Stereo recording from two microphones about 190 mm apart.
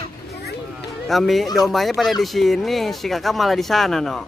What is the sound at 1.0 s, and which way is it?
Speech, centre (ahead or behind).